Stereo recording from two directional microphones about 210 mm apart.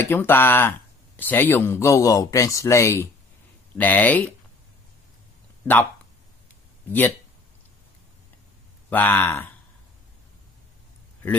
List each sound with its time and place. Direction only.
0.0 s speech: 10° left (ahead or behind)
6.8 s speech: 10° left (ahead or behind)
8.9 s speech: 10° left (ahead or behind)